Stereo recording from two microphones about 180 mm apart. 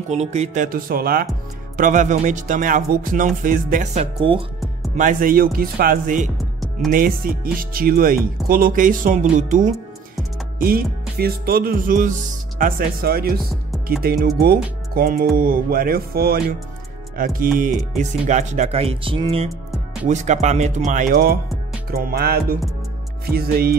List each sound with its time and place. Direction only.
0.1 s speech: 40° right (ahead or behind)
0.7 s speech: 50° right (ahead or behind)
1.8 s speech: 45° right (ahead or behind); by 4.5 s 30° right (ahead or behind)
4.9 s speech: 50° right (ahead or behind)
10.6 s music: 55° right (ahead or behind)
17.2 s speech: 50° right (ahead or behind); by 19.5 s 30° right (ahead or behind)
20.1 s speech: 40° right (ahead or behind)
21.9 s music: 55° right (ahead or behind)